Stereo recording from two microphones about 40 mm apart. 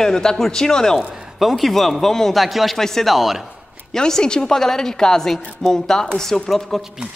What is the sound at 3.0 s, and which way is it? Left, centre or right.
Speech, centre.